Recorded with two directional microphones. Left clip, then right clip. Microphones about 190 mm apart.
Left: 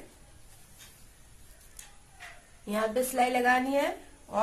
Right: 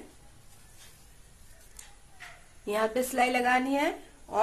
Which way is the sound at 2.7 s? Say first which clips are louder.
Right 1 dB; 40° right (ahead or behind).